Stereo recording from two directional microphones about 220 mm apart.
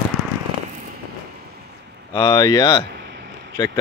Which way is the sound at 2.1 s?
15° left (ahead or behind).